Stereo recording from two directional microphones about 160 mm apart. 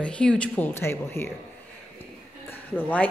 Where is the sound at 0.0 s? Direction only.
5° left (ahead or behind).